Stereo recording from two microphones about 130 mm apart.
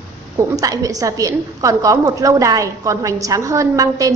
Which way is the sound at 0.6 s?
30° right (ahead or behind).